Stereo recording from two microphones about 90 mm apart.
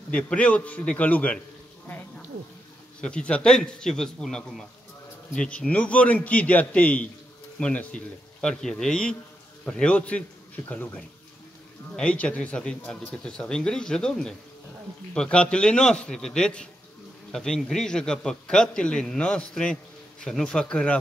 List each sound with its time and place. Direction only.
0.1 s a man's voice: 15° left (ahead or behind)
3.0 s a man's voice: 10° left (ahead or behind)